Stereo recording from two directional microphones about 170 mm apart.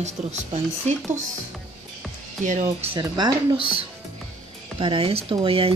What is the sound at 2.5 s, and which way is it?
Speech, 45° right (ahead or behind).